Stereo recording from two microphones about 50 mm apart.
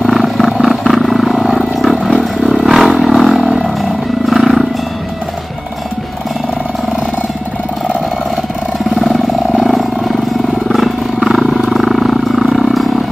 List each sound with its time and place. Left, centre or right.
0.0 s wild animals: centre
3.0 s a sound: centre
4.3 s wild animals: centre
9.5 s vehicle: centre
11.1 s wild animals: centre